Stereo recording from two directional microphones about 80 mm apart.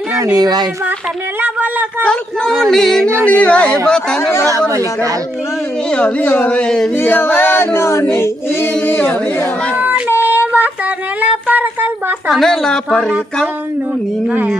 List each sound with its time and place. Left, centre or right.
0.1 s speech: right
1.4 s speech: right
2.0 s speech: centre
3.3 s speech: centre
4.2 s speech: left
4.5 s speech: right
5.9 s speech: centre
7.0 s speech: left
9.8 s child singing: right
11.1 s a sound: centre
12.3 s speech: centre